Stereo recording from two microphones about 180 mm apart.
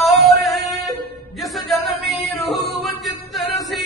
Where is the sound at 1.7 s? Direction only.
Centre (ahead or behind).